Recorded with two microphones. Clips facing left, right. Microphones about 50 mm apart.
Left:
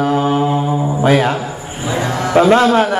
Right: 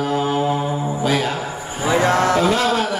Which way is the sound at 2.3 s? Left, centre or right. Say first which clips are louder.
Left 7 dB; left.